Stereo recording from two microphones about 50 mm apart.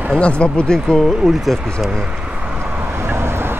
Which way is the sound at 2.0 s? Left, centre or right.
Centre.